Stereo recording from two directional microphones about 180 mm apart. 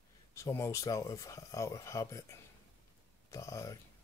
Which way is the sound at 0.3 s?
15° left (ahead or behind).